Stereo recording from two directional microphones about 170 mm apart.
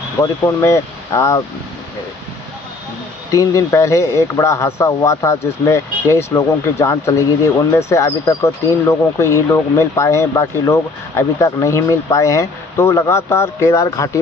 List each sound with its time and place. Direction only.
0.2 s speech: 15° left (ahead or behind)
3.3 s speech: 20° left (ahead or behind)